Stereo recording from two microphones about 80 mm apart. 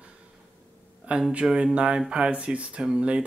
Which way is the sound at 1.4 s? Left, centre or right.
Centre.